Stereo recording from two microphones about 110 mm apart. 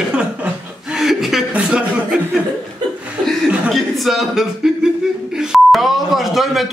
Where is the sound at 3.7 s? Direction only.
Centre (ahead or behind).